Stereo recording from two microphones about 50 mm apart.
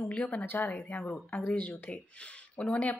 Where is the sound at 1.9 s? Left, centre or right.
Left.